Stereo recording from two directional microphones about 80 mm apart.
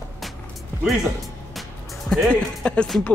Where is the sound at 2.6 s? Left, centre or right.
Centre.